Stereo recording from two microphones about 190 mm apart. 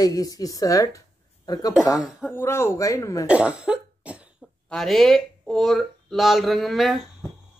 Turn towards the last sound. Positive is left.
turn(degrees=0)  # may be behind; listen again after turning